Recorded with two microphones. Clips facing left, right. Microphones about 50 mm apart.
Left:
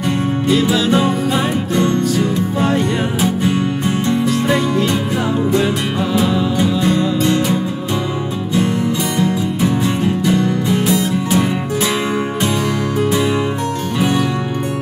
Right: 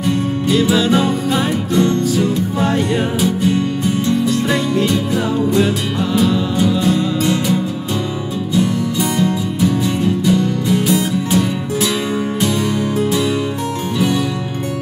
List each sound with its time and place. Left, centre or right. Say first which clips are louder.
0.5 s music: right 1 dB; centre
3.2 s music: even; left
4.5 s music: left 1 dB; centre
6.8 s music: left 1 dB; left
13.9 s music: even; left